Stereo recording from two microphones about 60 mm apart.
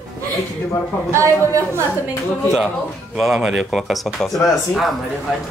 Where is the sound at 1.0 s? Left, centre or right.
Right.